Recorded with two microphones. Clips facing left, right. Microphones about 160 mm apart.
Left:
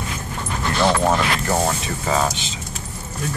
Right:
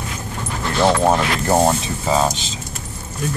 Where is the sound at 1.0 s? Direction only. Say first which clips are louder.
Right 2 dB; 20° right (ahead or behind).